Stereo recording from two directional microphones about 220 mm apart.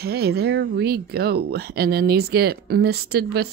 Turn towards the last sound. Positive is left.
turn(degrees=-45)  # may be behind; listen again after turning